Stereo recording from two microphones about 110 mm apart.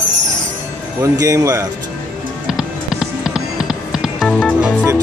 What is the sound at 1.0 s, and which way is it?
Speech, 30° right (ahead or behind).